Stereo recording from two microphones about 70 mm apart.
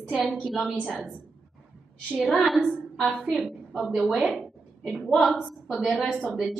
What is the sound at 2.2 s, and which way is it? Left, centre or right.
A woman's voice, centre.